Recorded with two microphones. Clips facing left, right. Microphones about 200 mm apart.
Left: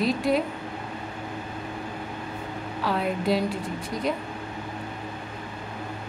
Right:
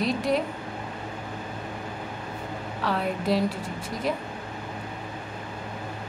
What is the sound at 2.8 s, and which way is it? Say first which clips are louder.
Speech: left 1 dB; centre (ahead or behind).